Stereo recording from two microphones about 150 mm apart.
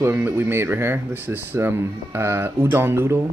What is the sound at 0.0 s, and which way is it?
Speech, 15° right (ahead or behind).